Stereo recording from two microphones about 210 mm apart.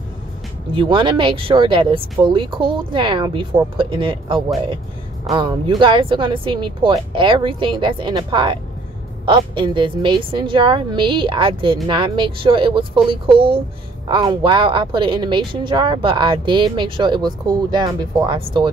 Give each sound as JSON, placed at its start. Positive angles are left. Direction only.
{"t": 0.7, "sound": "speech", "side_deg": -25}